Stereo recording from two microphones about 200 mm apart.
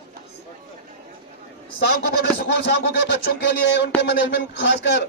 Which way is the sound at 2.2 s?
55° left (ahead or behind).